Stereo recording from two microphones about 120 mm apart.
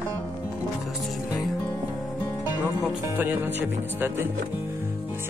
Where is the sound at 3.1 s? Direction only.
15° right (ahead or behind).